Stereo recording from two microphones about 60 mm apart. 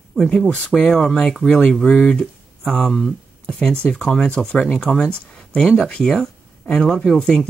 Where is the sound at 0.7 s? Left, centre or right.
Centre.